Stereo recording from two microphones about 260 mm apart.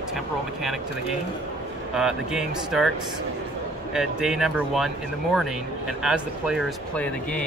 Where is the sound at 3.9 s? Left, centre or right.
Centre.